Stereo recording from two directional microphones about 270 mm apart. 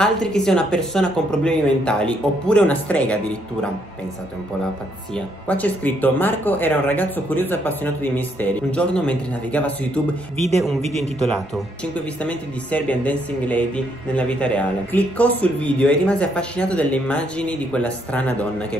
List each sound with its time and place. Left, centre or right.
0.0 s speech: centre
5.1 s speech: centre
10.8 s a man's voice: right
11.2 s speech: centre